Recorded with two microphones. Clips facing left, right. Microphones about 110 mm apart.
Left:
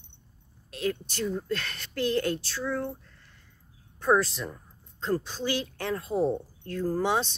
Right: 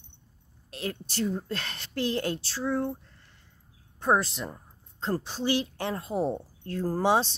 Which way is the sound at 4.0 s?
25° right (ahead or behind).